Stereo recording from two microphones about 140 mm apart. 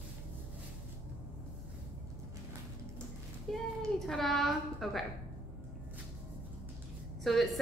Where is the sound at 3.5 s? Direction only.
5° left (ahead or behind).